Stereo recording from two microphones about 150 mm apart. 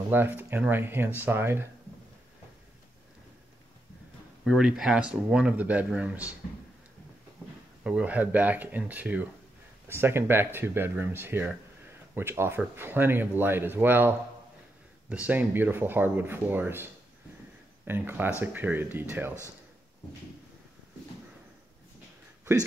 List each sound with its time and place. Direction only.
0.1 s speech: 15° right (ahead or behind)
4.5 s speech: 5° right (ahead or behind)
7.8 s speech: 10° right (ahead or behind)
22.4 s a sound: 15° right (ahead or behind)